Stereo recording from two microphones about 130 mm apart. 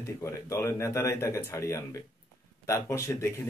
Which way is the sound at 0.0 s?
25° left (ahead or behind).